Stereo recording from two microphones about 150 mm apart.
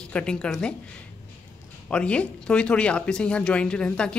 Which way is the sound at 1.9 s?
5° left (ahead or behind).